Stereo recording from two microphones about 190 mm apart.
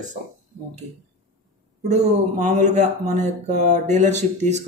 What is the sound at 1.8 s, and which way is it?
Speech, 40° right (ahead or behind).